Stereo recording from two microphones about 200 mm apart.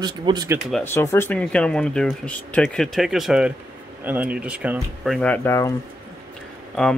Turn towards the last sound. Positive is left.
turn(degrees=5)  # may be behind; listen again after turning